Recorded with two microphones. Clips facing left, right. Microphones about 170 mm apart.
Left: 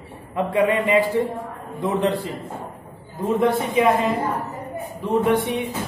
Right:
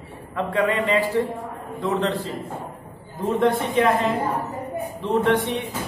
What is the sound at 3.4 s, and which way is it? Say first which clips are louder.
Speech: even; 5° left (ahead or behind).